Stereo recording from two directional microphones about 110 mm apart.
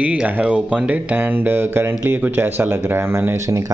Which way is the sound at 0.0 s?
10° right (ahead or behind).